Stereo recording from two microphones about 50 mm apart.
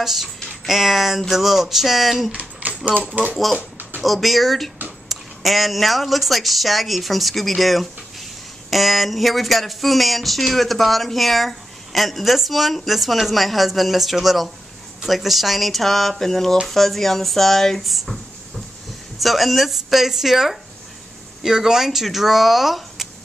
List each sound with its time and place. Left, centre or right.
0.0 s speech: centre
2.3 s a sound: right
4.0 s speech: centre